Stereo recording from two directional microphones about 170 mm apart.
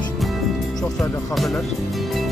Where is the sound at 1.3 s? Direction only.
Centre (ahead or behind).